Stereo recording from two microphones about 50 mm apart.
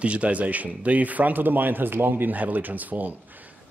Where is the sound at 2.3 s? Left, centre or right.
Right.